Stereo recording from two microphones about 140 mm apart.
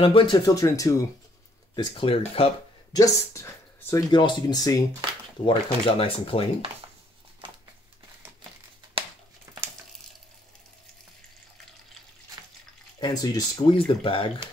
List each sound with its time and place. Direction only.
0.0 s speech: 40° left (ahead or behind)
0.5 s speech: 25° left (ahead or behind)
1.8 s speech: 40° left (ahead or behind)
2.9 s speech: 25° left (ahead or behind)
5.4 s speech: 40° left (ahead or behind)
9.0 s a sound: 40° right (ahead or behind)
9.5 s a sound: 20° right (ahead or behind)
13.0 s speech: 30° left (ahead or behind)